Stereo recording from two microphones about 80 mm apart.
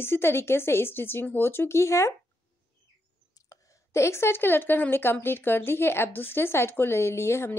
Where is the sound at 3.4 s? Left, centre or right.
Left.